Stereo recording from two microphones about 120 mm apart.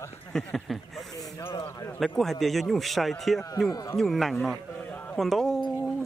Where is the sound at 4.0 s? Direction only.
Centre (ahead or behind).